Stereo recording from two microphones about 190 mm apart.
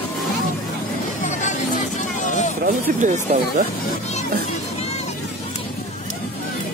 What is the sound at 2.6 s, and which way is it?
Speech, 40° right (ahead or behind).